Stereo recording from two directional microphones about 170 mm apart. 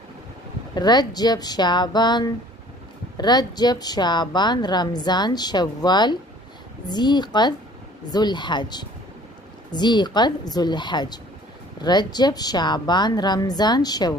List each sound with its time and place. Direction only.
0.7 s a woman's voice: 25° left (ahead or behind)